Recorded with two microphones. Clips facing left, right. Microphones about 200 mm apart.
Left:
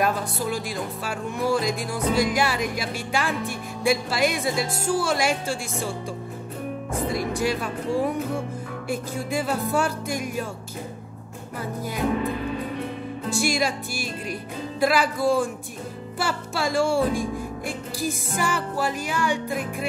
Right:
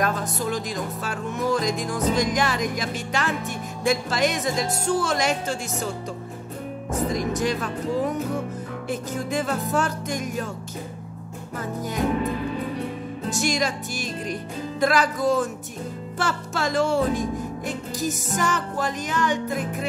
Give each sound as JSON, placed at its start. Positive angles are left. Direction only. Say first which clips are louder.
{"t": 0.0, "sound": "music", "louder": "left 1 dB", "side_deg": 10}
{"t": 6.9, "sound": "music", "louder": "right 2 dB", "side_deg": 10}
{"t": 13.3, "sound": "music", "louder": "left 1 dB", "side_deg": 10}